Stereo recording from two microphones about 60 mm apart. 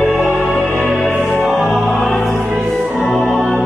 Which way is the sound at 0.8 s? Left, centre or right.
Centre.